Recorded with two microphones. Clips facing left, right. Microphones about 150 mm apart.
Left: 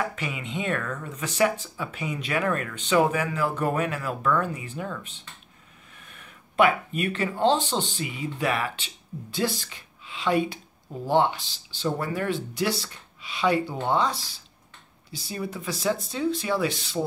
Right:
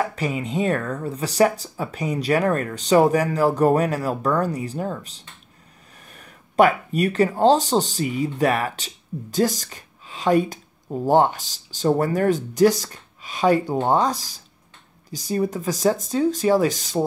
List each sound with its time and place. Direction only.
0.1 s speech: 40° right (ahead or behind)